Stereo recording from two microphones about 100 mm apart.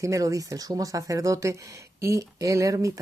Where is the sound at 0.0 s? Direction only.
35° right (ahead or behind).